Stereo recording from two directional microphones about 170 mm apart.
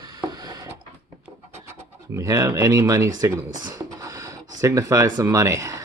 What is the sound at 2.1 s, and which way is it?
Speech, 20° right (ahead or behind).